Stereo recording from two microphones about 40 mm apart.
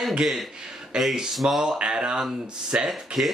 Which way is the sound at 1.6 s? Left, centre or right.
Centre.